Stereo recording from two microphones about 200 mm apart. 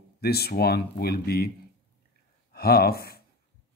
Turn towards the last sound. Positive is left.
turn(degrees=50)  # may be behind; listen again after turning